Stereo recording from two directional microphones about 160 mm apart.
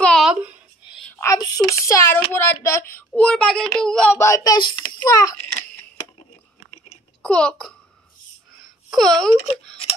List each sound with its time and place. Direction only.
0.0 s a sound: centre (ahead or behind)
1.2 s a child's voice: 20° left (ahead or behind); by 4.1 s 5° left (ahead or behind)
4.1 s a child's voice: 15° left (ahead or behind)
7.2 s a child's voice: 5° left (ahead or behind)
8.6 s wail: centre (ahead or behind)